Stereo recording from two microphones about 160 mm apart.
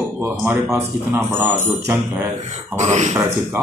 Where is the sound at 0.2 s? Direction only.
10° right (ahead or behind).